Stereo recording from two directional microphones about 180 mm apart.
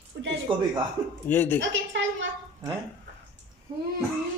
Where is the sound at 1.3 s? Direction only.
10° left (ahead or behind).